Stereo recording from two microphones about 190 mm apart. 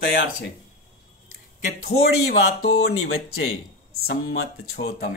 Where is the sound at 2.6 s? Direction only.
60° left (ahead or behind).